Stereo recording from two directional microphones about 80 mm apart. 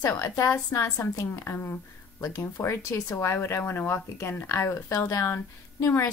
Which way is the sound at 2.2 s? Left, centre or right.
Left.